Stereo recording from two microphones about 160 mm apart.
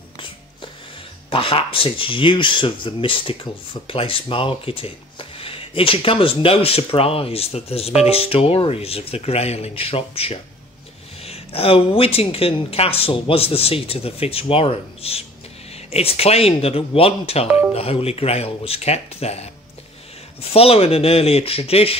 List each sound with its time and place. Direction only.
1.3 s speech: 35° left (ahead or behind)